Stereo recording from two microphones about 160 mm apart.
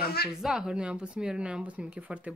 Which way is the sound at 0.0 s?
80° left.